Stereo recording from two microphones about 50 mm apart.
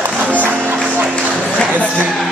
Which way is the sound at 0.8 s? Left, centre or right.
Right.